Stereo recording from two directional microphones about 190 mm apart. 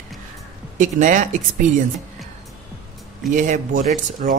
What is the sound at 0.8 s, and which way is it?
Speech, 40° right (ahead or behind).